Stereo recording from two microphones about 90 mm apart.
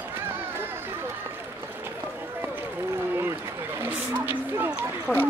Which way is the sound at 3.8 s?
20° right (ahead or behind).